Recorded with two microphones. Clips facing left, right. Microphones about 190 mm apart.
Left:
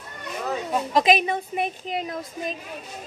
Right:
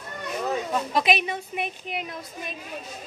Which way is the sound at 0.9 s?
45° left (ahead or behind).